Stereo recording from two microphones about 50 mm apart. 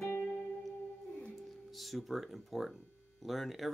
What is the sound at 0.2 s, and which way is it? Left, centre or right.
Music, left.